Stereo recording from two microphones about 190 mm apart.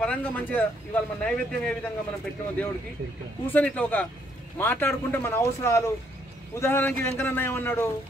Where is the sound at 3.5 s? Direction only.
10° left (ahead or behind).